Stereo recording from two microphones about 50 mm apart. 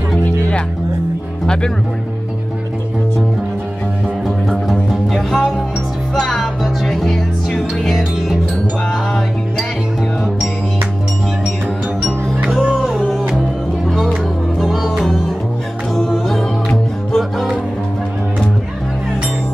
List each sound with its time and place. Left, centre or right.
1.4 s speech: centre
4.5 s music: centre
14.6 s music: centre
17.1 s music: centre